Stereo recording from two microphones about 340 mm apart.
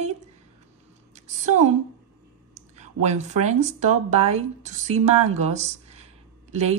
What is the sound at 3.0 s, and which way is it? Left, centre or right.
Speech, centre.